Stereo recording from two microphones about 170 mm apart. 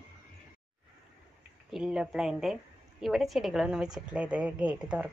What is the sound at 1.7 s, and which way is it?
A woman's voice, 5° right (ahead or behind).